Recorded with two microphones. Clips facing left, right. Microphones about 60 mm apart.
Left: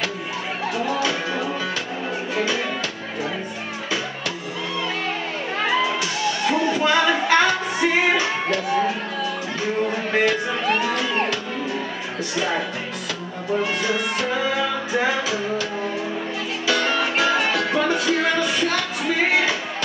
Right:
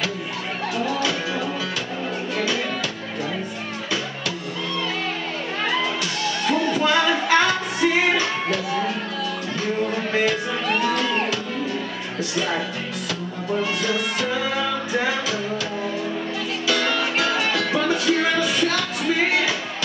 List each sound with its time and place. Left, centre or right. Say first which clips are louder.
0.7 s music: even; centre
5.6 s music: left 3 dB; centre
12.4 s music: left 1 dB; centre